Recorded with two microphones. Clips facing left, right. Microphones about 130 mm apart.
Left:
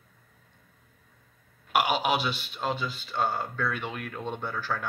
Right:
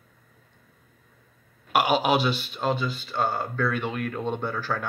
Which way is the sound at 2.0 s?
5° left (ahead or behind).